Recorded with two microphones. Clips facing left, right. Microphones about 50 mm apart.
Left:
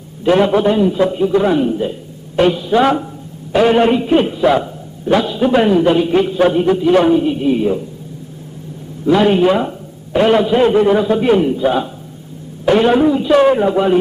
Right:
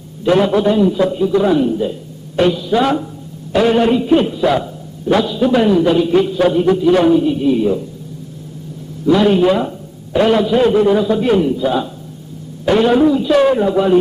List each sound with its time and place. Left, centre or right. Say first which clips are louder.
0.2 s a man's voice: left 1 dB; centre
9.0 s a man's voice: even; left